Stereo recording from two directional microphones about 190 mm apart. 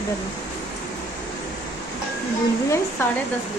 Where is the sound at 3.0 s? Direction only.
15° left (ahead or behind).